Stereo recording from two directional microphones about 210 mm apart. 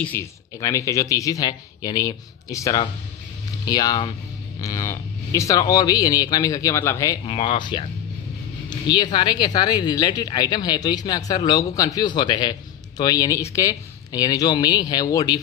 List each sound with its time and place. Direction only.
0.0 s speech: 10° left (ahead or behind)